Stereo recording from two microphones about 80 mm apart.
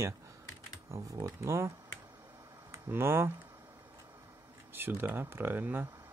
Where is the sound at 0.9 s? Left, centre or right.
Right.